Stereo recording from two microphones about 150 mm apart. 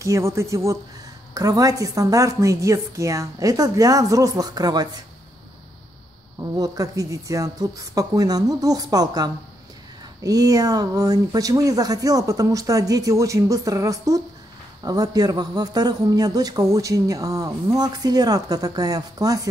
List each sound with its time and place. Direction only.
0.0 s a man's voice: 20° right (ahead or behind)
6.4 s a man's voice: 25° right (ahead or behind)